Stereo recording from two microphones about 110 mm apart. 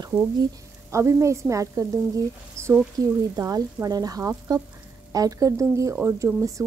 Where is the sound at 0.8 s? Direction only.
25° right (ahead or behind).